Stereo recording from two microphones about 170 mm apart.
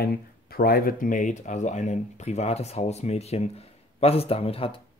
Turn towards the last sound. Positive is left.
turn(degrees=35)  # may be behind; listen again after turning